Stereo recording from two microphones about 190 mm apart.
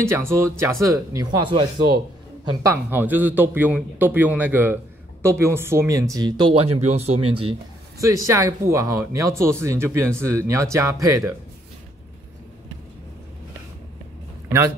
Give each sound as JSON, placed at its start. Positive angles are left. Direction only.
{"t": 0.1, "sound": "speech", "side_deg": -15}
{"t": 2.6, "sound": "speech", "side_deg": -10}
{"t": 8.0, "sound": "speech", "side_deg": -15}